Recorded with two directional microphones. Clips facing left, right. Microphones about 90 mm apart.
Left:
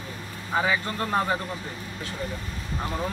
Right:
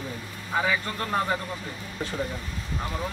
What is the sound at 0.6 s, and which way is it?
Speech, 20° left (ahead or behind).